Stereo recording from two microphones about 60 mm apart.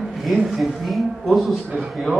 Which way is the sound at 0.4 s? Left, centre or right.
Centre.